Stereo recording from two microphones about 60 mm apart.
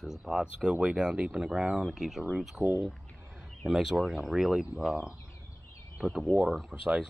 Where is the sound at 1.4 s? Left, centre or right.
Centre.